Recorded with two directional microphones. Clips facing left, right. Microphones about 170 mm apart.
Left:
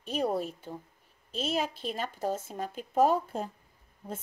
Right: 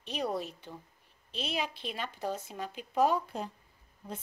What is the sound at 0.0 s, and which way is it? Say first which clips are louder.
Speech: left 4 dB; 45° left (ahead or behind).